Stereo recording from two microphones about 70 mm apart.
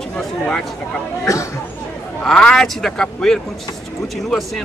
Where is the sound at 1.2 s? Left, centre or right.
Left.